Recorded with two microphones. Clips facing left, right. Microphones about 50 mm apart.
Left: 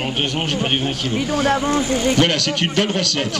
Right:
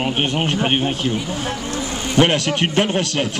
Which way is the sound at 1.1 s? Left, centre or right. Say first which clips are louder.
Left 6 dB; left.